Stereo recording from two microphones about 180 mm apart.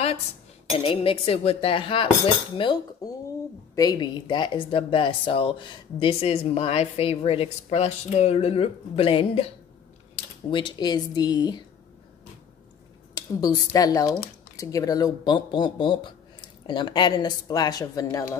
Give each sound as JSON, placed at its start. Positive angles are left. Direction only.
{"t": 0.7, "sound": "speech", "side_deg": 30}
{"t": 13.1, "sound": "speech", "side_deg": 20}